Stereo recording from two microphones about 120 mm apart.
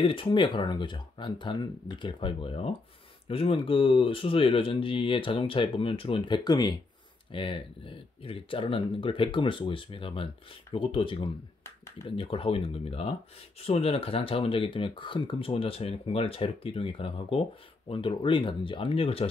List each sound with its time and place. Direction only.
0.0 s speech: 45° left (ahead or behind)
7.2 s speech: 45° left (ahead or behind)